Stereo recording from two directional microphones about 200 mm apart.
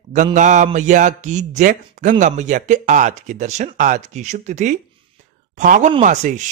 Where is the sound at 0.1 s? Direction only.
40° right (ahead or behind).